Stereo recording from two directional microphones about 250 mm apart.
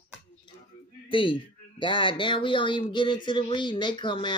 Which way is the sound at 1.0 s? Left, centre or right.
Left.